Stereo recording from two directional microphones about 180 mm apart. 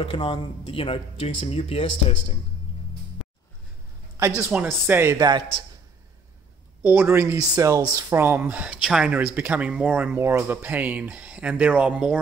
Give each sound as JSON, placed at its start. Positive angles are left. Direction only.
{"t": 0.0, "sound": "speech", "side_deg": 30}
{"t": 4.4, "sound": "speech", "side_deg": -10}
{"t": 6.8, "sound": "speech", "side_deg": -10}